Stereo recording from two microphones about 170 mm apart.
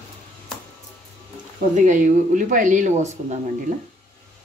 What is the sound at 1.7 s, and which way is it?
Speech, 50° right (ahead or behind).